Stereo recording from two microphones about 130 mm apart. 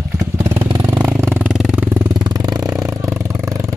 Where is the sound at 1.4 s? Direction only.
5° right (ahead or behind).